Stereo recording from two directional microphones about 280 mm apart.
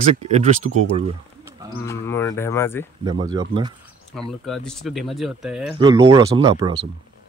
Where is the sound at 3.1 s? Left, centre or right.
Centre.